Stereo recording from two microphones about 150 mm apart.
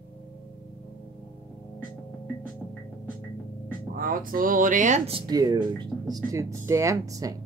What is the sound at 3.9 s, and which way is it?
Speech, 65° right (ahead or behind).